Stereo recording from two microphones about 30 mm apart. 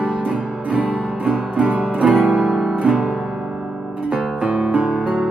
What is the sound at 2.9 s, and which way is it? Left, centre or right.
Music, right.